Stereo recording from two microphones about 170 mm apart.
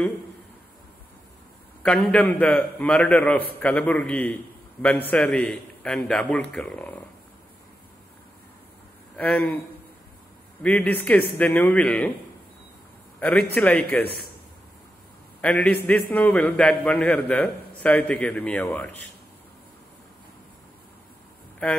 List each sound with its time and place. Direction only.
2.0 s a man's voice: 5° left (ahead or behind)
9.1 s speech: 10° left (ahead or behind)
10.6 s a man's voice: 10° left (ahead or behind)
13.2 s a man's voice: 5° left (ahead or behind)
15.4 s a man's voice: 5° left (ahead or behind)